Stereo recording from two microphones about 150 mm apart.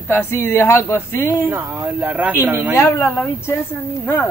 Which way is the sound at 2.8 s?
20° left (ahead or behind).